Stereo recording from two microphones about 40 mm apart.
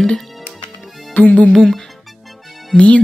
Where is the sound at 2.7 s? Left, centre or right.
Left.